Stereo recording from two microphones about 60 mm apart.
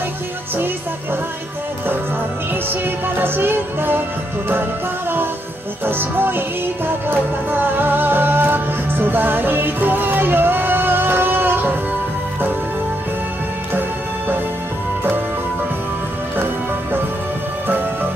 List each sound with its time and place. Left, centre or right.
3.2 s music: right
5.9 s music: right